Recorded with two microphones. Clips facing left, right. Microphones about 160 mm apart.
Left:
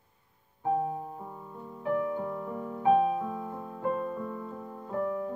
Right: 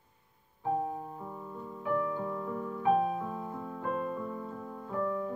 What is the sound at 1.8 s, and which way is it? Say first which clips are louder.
Music: left 2 dB; 20° left (ahead or behind).